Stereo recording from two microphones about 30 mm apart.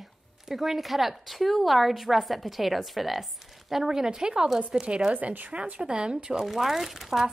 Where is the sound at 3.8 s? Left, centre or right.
Centre.